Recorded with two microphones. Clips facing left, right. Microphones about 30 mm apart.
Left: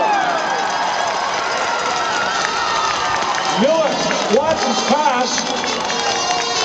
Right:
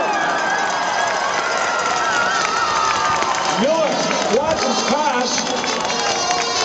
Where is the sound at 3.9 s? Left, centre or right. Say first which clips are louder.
Left 1 dB; centre.